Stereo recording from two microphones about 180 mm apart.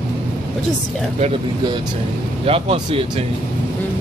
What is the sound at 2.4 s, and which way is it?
Speech, 30° right (ahead or behind).